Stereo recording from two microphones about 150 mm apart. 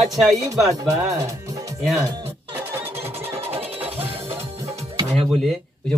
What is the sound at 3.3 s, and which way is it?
Music, 40° right (ahead or behind).